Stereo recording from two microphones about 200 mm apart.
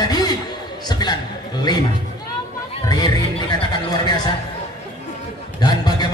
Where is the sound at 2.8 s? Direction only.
20° left (ahead or behind).